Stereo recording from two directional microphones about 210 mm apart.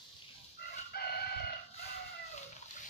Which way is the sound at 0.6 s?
45° left (ahead or behind).